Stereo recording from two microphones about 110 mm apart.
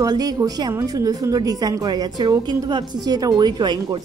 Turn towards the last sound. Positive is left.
turn(degrees=-45)  # may be behind; listen again after turning